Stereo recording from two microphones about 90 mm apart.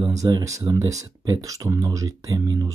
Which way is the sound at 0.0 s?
40° right (ahead or behind).